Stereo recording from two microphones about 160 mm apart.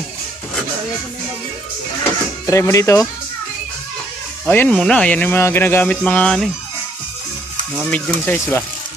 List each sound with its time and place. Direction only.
2.4 s speech: 20° left (ahead or behind)
4.5 s speech: 10° left (ahead or behind)
7.9 s speech: 10° left (ahead or behind)